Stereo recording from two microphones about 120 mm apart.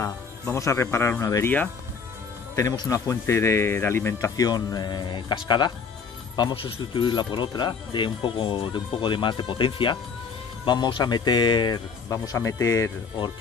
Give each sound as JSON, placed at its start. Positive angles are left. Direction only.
{"t": 0.0, "sound": "speech", "side_deg": 25}
{"t": 2.5, "sound": "speech", "side_deg": 35}